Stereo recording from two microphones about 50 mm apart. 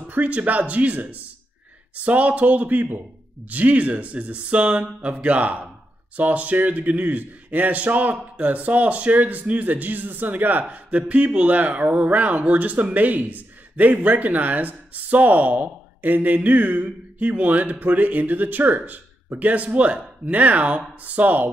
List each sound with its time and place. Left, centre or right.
0.1 s a man's voice: right